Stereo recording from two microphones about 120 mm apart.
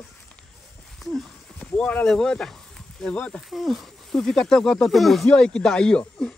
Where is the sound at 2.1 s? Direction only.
5° left (ahead or behind).